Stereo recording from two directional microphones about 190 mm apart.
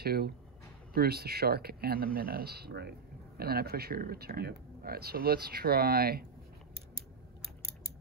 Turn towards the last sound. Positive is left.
turn(degrees=-55)  # may be behind; listen again after turning